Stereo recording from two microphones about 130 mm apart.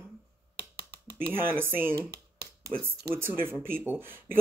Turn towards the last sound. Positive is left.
turn(degrees=-15)  # may be behind; listen again after turning